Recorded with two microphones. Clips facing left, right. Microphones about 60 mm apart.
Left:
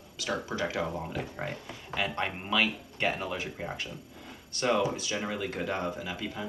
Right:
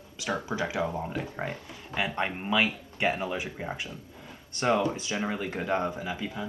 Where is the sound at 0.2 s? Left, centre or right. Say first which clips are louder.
Right 1 dB; right.